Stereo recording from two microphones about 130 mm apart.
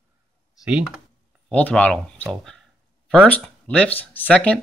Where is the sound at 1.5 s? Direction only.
10° left (ahead or behind).